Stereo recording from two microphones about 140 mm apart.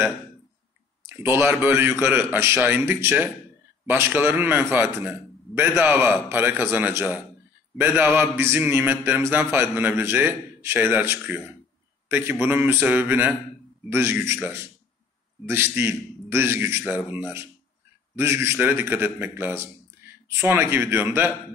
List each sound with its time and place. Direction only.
1.0 s a man's voice: 15° right (ahead or behind)